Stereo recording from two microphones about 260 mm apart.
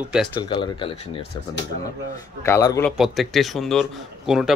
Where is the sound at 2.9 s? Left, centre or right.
Centre.